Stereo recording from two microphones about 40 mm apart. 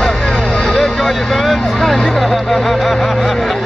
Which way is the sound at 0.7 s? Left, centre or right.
Centre.